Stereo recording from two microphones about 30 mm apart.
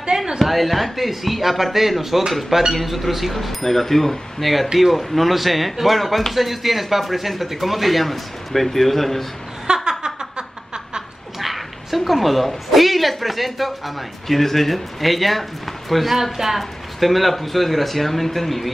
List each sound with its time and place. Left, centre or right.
0.4 s speech: centre
3.3 s speech: centre
9.8 s a sound: right
11.3 s speech: centre
16.3 s a woman's voice: centre